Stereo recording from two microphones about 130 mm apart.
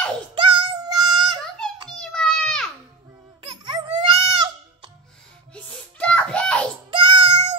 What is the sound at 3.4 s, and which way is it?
Music, 35° right (ahead or behind).